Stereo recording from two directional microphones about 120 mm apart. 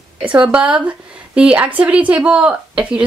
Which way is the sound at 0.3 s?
10° right (ahead or behind).